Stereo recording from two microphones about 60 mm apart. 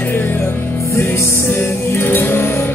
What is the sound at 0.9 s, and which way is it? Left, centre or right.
Music, left.